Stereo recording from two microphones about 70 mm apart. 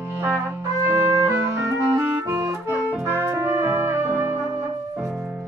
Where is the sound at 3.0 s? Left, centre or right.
Right.